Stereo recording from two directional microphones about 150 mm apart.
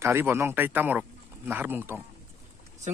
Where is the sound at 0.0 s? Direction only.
15° right (ahead or behind).